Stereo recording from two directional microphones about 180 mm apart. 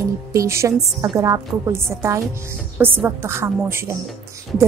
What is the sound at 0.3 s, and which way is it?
A woman's voice, 15° right (ahead or behind).